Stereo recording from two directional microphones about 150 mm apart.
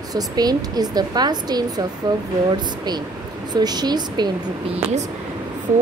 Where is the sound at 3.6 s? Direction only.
25° right (ahead or behind).